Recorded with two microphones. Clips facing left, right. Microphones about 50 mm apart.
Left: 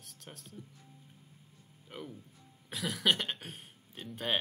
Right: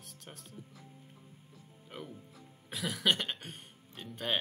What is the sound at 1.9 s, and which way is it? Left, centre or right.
Speech, centre.